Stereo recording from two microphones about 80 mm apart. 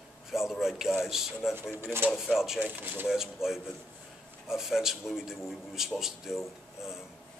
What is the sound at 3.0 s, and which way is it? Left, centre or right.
A man's voice, centre.